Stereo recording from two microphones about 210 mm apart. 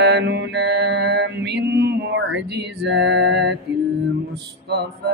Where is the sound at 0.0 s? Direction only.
50° right (ahead or behind).